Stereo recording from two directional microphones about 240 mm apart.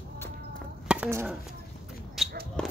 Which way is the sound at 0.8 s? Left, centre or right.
Centre.